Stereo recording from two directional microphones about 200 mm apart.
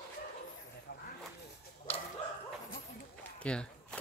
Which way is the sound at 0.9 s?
60° left (ahead or behind).